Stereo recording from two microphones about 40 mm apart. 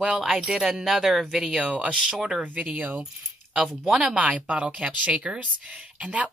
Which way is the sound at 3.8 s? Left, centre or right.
Centre.